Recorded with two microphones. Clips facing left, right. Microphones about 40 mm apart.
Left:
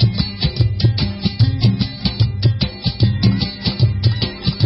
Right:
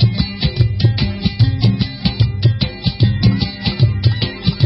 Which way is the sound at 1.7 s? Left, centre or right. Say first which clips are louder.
Right 2 dB; right.